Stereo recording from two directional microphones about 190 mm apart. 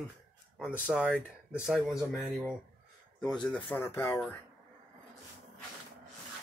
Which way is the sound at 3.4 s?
10° left (ahead or behind).